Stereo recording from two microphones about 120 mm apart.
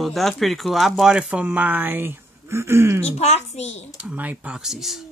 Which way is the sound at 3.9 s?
10° right (ahead or behind).